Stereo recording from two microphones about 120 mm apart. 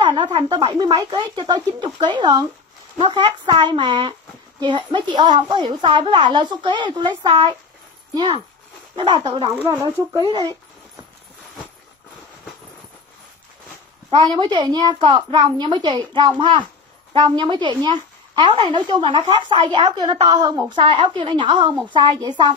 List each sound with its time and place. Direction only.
0.0 s a woman's voice: 40° right (ahead or behind)
8.9 s a woman's voice: 40° right (ahead or behind)
14.2 s a woman's voice: 40° right (ahead or behind)